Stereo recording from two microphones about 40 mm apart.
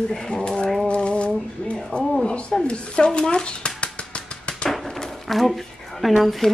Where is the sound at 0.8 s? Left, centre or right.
Left.